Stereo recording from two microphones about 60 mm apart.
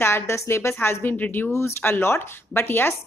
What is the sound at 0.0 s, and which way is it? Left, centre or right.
A woman's voice, left.